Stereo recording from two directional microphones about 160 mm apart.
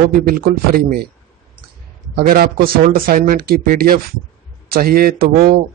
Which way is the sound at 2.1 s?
65° right (ahead or behind).